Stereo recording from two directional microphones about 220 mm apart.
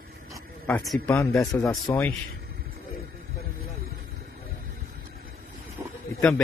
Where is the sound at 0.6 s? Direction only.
5° left (ahead or behind).